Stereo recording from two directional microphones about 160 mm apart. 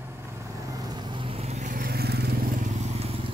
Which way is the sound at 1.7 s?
70° right (ahead or behind).